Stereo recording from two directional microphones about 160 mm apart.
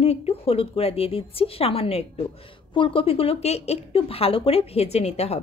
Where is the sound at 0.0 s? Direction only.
40° left (ahead or behind).